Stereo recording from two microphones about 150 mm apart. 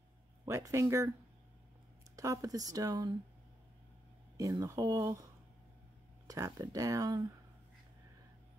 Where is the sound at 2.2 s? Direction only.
20° right (ahead or behind).